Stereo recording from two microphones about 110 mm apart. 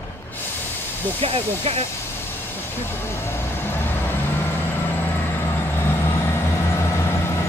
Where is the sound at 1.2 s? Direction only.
65° right (ahead or behind).